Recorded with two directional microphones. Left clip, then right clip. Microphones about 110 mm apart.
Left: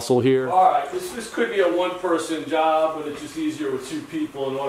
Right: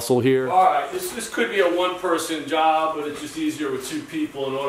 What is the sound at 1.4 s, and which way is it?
Speech, 15° right (ahead or behind).